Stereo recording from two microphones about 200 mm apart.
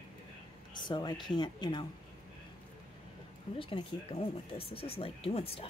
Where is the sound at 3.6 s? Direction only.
25° left (ahead or behind).